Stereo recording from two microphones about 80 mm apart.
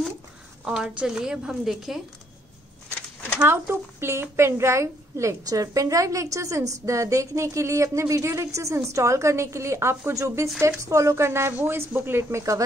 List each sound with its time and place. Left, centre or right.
0.7 s a woman's voice: centre
3.3 s a woman's voice: right